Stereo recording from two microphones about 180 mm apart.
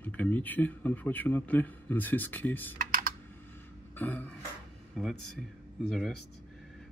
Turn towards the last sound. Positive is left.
turn(degrees=0)  # may be behind; listen again after turning